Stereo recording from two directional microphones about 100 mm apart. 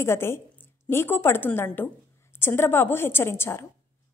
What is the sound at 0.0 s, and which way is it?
A woman's voice, 25° left (ahead or behind).